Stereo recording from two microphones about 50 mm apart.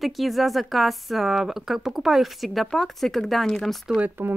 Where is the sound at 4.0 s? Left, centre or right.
Right.